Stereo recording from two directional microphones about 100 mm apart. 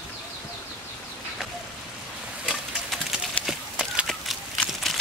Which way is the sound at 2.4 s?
Centre (ahead or behind).